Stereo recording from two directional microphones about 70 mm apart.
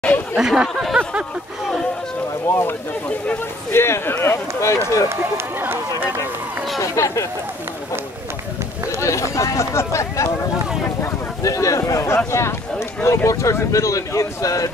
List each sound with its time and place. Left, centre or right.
0.0 s chatter: left
0.4 s speech: centre
2.4 s speech: left
3.7 s speech: left
5.1 s speech: right
6.8 s speech: left
9.0 s speech: left
11.4 s speech: left